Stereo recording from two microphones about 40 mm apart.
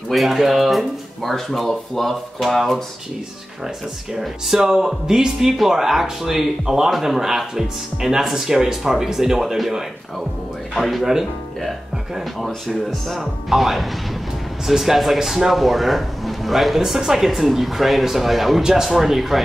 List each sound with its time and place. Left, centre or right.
0.1 s speech: centre
4.2 s speech: centre
10.7 s speech: centre
12.4 s speech: centre